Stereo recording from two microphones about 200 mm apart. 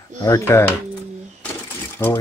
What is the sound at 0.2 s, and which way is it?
Speech, 15° left (ahead or behind).